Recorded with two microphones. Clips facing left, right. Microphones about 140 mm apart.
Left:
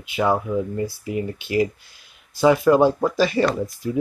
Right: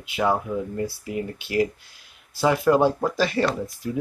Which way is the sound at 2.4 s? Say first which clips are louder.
Left 4 dB; 5° left (ahead or behind).